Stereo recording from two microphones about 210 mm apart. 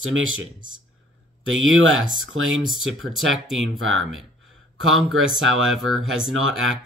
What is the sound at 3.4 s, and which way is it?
Speech, centre (ahead or behind).